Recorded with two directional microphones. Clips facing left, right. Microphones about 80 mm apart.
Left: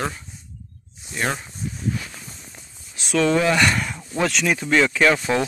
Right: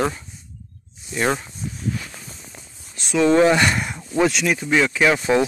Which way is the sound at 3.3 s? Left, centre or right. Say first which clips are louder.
Right 6 dB; right.